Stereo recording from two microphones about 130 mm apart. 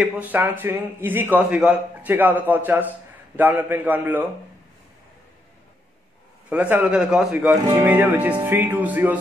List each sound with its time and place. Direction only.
0.0 s a man's voice: 15° right (ahead or behind)
6.5 s a man's voice: 10° right (ahead or behind)